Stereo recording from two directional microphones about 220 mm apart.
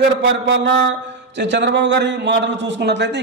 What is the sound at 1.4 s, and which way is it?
A man's voice, 50° right (ahead or behind).